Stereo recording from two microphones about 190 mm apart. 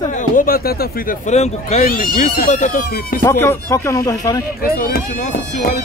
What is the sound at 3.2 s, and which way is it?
Speech, 15° left (ahead or behind).